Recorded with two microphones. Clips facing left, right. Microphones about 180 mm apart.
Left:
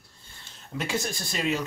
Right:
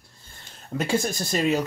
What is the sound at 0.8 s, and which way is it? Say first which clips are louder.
Speech: right 5 dB; 45° right (ahead or behind).